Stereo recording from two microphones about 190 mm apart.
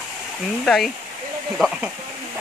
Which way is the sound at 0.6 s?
Centre (ahead or behind).